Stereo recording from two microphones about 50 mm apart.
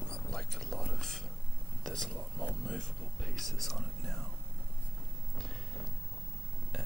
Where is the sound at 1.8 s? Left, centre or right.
Centre.